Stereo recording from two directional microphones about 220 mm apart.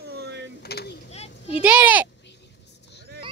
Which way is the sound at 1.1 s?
30° left (ahead or behind).